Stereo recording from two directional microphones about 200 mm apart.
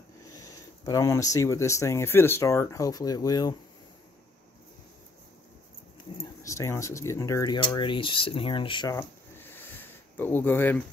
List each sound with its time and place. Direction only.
0.4 s speech: 15° left (ahead or behind)
6.4 s speech: 15° left (ahead or behind)